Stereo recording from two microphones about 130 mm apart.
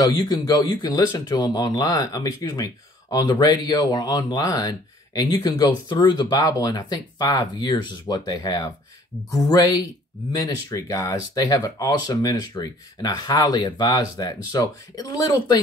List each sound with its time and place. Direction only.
0.0 s speech: 35° left (ahead or behind)